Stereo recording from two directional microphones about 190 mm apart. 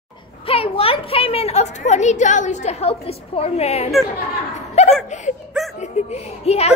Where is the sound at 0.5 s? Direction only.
30° left (ahead or behind).